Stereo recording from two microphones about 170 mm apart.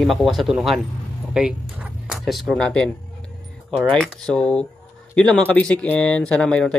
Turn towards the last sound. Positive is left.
turn(degrees=5)  # may be behind; listen again after turning